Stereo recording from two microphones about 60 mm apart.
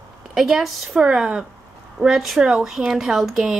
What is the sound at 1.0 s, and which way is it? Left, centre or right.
A woman's voice, centre.